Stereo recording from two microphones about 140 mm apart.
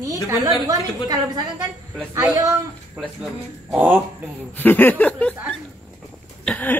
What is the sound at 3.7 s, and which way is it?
Speech, 15° right (ahead or behind).